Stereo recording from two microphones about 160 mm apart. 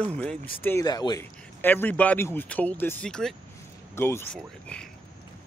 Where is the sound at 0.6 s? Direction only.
10° left (ahead or behind).